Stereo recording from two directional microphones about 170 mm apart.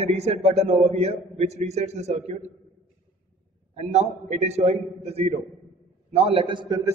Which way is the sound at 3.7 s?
40° right (ahead or behind).